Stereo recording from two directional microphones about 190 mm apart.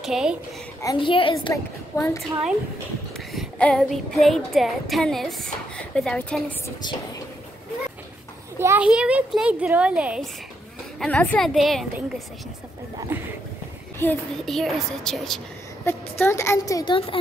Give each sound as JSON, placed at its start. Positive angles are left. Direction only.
{"t": 0.0, "sound": "child singing", "side_deg": -5}
{"t": 0.8, "sound": "a child's voice", "side_deg": 25}
{"t": 1.5, "sound": "a woman's voice", "side_deg": 15}
{"t": 3.3, "sound": "child singing", "side_deg": 5}
{"t": 8.5, "sound": "speech", "side_deg": -10}
{"t": 11.0, "sound": "child singing", "side_deg": 5}
{"t": 13.1, "sound": "speech", "side_deg": -10}
{"t": 13.9, "sound": "a woman's voice", "side_deg": 5}